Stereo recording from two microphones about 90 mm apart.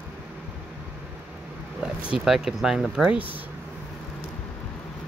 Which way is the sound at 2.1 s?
5° right (ahead or behind).